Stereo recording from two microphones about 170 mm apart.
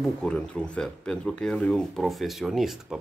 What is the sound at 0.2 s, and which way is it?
Speech, 5° left (ahead or behind).